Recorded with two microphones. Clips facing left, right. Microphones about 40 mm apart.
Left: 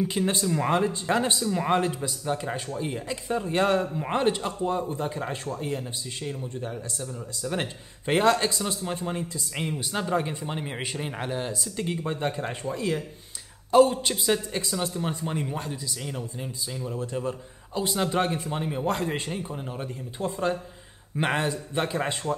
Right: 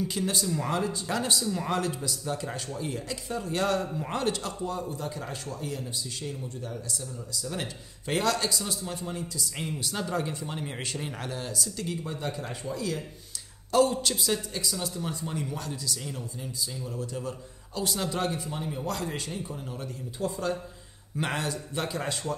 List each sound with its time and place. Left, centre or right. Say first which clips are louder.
0.0 s speech: left 4 dB; left